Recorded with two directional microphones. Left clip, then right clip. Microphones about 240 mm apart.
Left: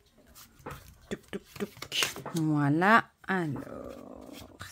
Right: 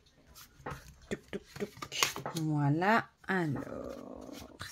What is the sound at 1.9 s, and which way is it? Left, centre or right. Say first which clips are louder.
Speech: left 2 dB; left.